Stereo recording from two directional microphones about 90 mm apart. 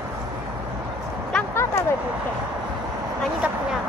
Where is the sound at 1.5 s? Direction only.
30° left (ahead or behind).